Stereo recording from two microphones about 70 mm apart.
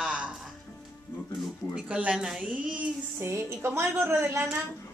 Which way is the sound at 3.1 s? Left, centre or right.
Right.